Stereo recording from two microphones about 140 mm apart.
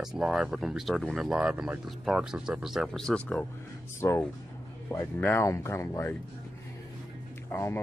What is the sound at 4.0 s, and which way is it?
Speech, 20° left (ahead or behind).